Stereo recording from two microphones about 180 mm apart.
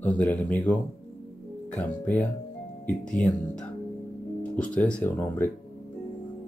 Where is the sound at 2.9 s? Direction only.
45° left (ahead or behind).